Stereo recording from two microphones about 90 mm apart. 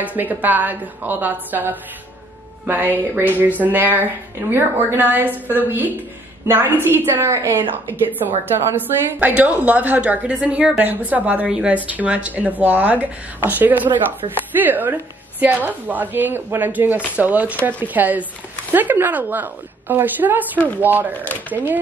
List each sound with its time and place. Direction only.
0.0 s speech: 20° right (ahead or behind)
8.7 s speech: 20° right (ahead or behind)
21.2 s speech: 20° left (ahead or behind)